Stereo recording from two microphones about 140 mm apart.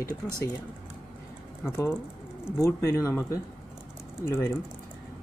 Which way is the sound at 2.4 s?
20° left (ahead or behind).